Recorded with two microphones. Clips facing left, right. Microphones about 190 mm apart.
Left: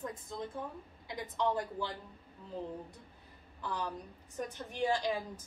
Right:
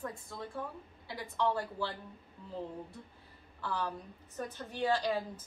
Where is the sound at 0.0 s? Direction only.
20° left (ahead or behind).